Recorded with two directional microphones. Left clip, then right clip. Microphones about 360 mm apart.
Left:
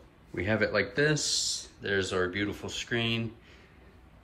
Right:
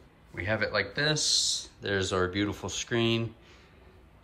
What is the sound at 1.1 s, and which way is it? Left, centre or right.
Speech, right.